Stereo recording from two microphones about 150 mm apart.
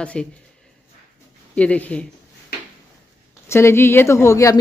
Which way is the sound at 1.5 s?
10° left (ahead or behind).